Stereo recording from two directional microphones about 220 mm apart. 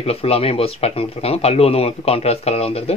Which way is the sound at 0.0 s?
25° left (ahead or behind).